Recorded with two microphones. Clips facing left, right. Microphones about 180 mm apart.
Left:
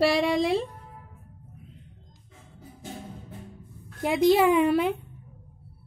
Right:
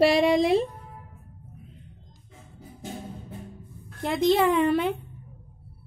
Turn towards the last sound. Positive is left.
turn(degrees=5)  # may be behind; listen again after turning